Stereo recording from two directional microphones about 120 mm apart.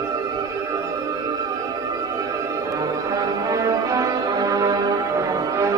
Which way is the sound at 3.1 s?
30° right (ahead or behind).